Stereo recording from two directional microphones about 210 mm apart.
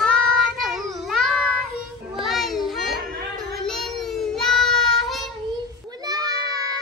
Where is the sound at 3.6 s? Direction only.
Centre (ahead or behind).